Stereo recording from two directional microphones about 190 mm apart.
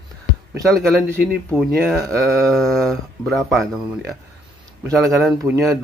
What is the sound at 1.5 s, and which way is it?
Speech, centre (ahead or behind).